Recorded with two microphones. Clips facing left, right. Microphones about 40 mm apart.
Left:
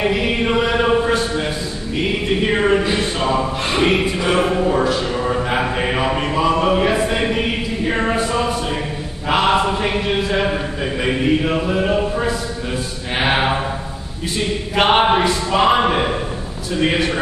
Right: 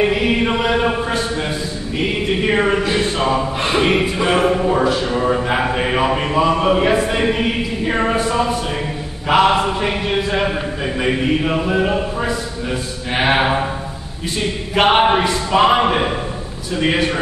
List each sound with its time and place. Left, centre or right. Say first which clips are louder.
0.1 s chant: right 1 dB; centre
2.5 s speech: even; centre
9.3 s speech: right 2 dB; centre
13.1 s mantra: right 2 dB; centre
14.8 s speech: right 1 dB; centre